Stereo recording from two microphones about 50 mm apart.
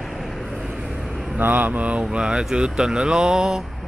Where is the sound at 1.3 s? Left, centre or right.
Right.